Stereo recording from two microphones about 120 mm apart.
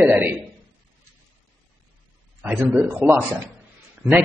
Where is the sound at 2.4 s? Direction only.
15° right (ahead or behind).